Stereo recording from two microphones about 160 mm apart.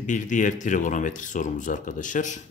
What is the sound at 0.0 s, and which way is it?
Speech, 50° left (ahead or behind).